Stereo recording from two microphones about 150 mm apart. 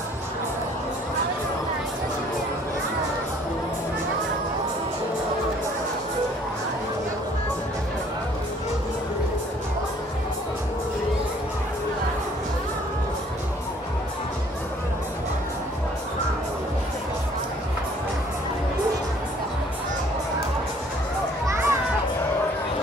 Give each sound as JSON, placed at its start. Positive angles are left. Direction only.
{"t": 21.5, "sound": "children playing", "side_deg": -15}